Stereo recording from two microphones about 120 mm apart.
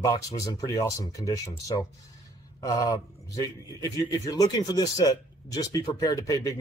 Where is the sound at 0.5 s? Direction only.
30° left (ahead or behind).